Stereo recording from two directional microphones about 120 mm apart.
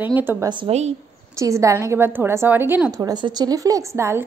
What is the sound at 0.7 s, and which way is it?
Speech, 65° right (ahead or behind).